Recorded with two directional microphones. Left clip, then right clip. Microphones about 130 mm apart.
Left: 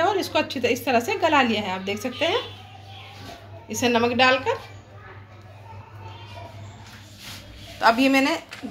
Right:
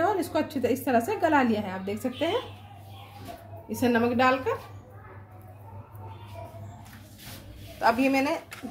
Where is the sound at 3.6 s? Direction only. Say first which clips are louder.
Left 4 dB; 50° right (ahead or behind); by 4.6 s 70° right (ahead or behind).